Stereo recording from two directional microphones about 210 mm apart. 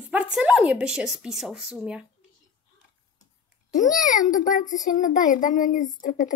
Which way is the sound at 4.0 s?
40° left (ahead or behind).